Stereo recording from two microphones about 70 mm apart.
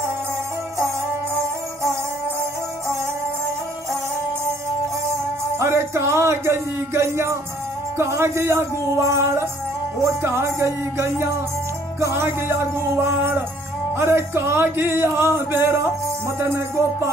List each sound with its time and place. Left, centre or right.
5.6 s speech: right
10.0 s music: right
12.0 s speech: right